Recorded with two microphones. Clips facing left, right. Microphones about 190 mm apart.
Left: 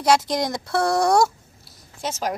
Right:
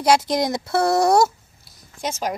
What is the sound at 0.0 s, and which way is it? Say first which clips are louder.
Speech: right 2 dB; centre (ahead or behind).